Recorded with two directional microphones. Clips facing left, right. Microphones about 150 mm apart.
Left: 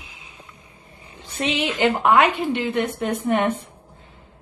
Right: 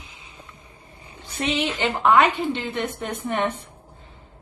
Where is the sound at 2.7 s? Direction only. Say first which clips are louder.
Left 5 dB; 40° left (ahead or behind).